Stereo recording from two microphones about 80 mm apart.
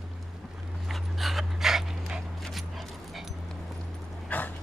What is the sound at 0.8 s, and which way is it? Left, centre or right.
Dog, centre.